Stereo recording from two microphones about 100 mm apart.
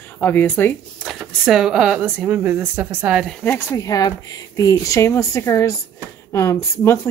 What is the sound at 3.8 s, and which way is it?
A woman's voice, 35° left (ahead or behind).